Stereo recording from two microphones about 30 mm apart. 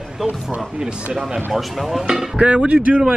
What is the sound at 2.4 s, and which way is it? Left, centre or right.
Speech, right.